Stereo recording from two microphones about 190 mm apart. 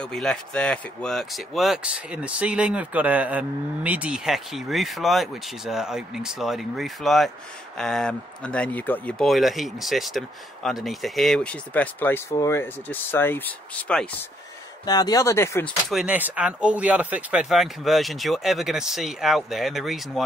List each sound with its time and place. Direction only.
0.0 s speech: 5° left (ahead or behind)
14.9 s speech: 20° left (ahead or behind)
15.9 s speech: 5° right (ahead or behind)